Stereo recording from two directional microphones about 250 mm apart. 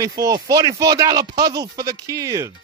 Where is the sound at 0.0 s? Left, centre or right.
Centre.